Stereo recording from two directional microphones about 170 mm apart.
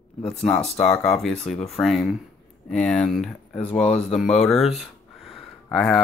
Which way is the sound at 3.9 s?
Centre (ahead or behind).